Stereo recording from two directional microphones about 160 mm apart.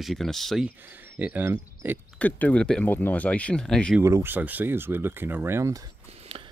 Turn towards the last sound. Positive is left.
turn(degrees=-35)  # may be behind; listen again after turning